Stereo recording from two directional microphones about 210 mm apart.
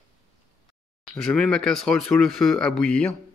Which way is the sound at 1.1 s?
Centre (ahead or behind).